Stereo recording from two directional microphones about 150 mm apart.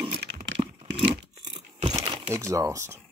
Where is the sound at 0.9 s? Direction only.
35° right (ahead or behind).